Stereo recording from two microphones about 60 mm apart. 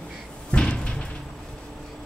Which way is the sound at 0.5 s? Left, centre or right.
Centre.